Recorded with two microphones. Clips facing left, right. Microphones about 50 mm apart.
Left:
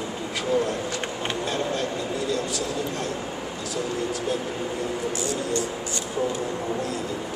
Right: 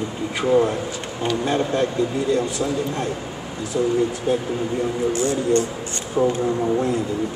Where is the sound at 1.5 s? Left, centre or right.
Right.